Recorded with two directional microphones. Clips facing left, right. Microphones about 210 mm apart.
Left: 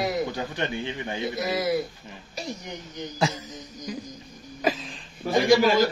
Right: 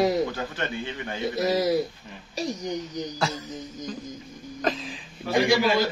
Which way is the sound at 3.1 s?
15° left (ahead or behind).